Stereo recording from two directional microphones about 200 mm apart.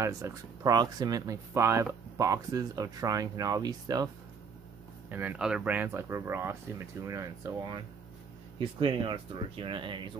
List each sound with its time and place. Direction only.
0.0 s speech: 15° right (ahead or behind)
5.1 s speech: 10° right (ahead or behind); by 10.1 s 25° right (ahead or behind)